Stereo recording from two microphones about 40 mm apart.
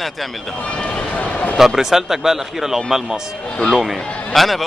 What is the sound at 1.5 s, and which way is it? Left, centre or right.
A man's voice, centre.